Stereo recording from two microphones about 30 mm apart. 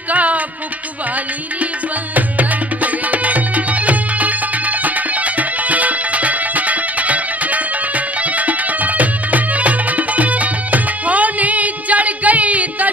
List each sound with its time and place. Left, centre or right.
0.1 s music: right
2.1 s music: right